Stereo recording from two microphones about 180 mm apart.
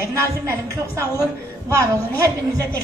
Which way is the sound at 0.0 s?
15° right (ahead or behind).